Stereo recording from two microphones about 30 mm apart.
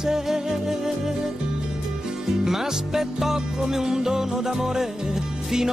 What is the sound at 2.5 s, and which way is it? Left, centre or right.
Music, centre.